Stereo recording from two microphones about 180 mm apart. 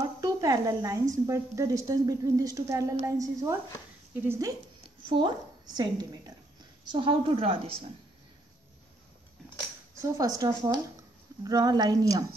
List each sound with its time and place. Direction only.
0.2 s a sound: 20° right (ahead or behind)
1.1 s a woman's voice: 20° right (ahead or behind)
5.8 s a woman's voice: 20° right (ahead or behind)
10.1 s a woman's voice: 20° right (ahead or behind)